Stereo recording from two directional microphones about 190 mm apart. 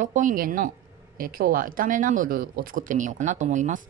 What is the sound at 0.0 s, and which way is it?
Speech, 45° right (ahead or behind).